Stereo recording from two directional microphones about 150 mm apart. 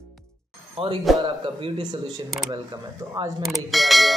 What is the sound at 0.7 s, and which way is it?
A man's voice, 35° right (ahead or behind).